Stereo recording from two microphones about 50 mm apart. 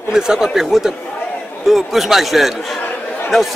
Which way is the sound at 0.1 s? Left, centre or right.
Centre.